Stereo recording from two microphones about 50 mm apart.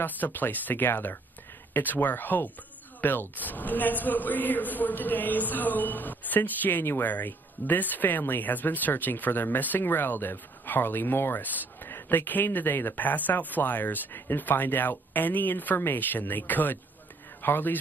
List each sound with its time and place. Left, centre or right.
0.0 s a man's voice: left